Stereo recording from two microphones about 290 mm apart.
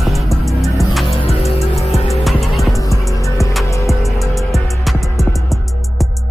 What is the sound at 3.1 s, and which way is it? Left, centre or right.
Music, centre.